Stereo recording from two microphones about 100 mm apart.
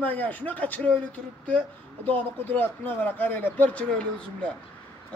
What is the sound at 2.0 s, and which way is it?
Speech, 20° left (ahead or behind).